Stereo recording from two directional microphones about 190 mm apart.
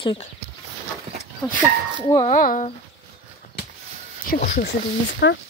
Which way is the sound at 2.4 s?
45° left (ahead or behind).